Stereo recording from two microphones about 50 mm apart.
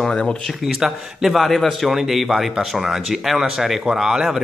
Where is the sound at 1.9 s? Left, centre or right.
Centre.